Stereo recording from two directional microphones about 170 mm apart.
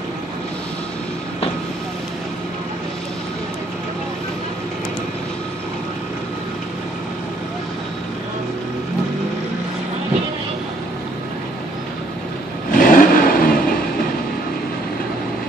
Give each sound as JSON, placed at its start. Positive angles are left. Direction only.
{"t": 12.7, "sound": "vehicle", "side_deg": 55}